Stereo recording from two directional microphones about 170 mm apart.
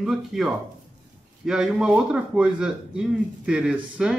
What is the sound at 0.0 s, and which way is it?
A man's voice, centre (ahead or behind).